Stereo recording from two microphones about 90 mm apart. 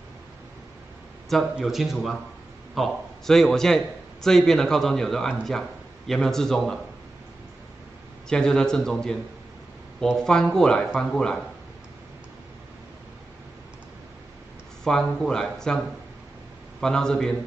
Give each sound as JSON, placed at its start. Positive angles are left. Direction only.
{"t": 1.3, "sound": "a man's voice", "side_deg": 0}
{"t": 8.3, "sound": "speech", "side_deg": 10}
{"t": 14.9, "sound": "speech", "side_deg": 5}
{"t": 16.8, "sound": "speech", "side_deg": 10}